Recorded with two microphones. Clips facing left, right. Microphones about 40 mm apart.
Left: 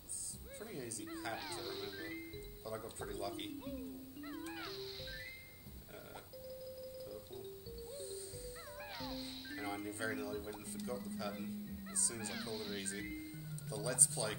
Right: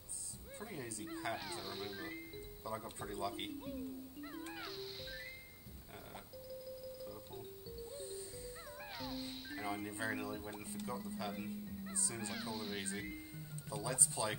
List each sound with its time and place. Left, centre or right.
0.6 s speech: right
1.3 s speech: centre
2.6 s speech: centre
4.2 s cat: centre
8.5 s music: centre
9.8 s speech: right
12.3 s speech: centre
13.7 s speech: right